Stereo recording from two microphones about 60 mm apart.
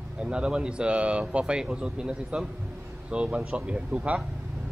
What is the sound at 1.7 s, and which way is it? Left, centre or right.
Speech, centre.